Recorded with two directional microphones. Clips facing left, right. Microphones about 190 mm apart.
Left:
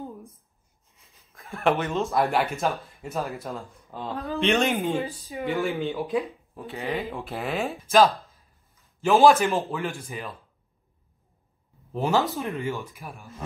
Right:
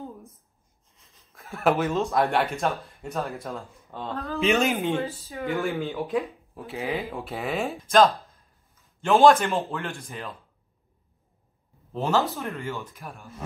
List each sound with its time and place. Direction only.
1.3 s speech: centre (ahead or behind)
4.9 s speech: 15° left (ahead or behind)
5.9 s speech: centre (ahead or behind)
11.9 s speech: 10° left (ahead or behind)